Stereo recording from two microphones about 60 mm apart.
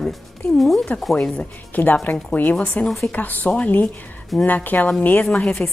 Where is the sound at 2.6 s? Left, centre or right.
Left.